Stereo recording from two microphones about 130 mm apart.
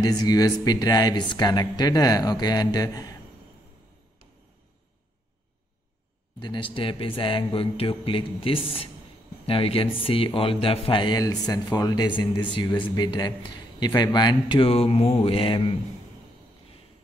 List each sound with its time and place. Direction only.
0.0 s speech: 30° left (ahead or behind)
6.4 s speech: 40° left (ahead or behind)